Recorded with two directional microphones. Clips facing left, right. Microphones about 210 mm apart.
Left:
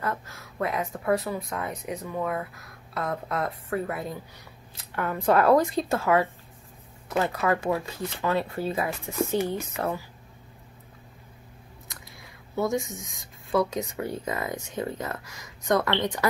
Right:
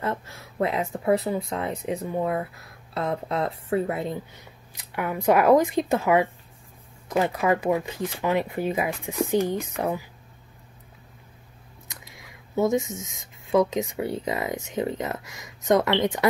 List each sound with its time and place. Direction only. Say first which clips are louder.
0.0 s speech: right 2 dB; 25° right (ahead or behind)
4.7 s speech: right 1 dB; 10° right (ahead or behind)
12.5 s speech: right 4 dB; 20° right (ahead or behind)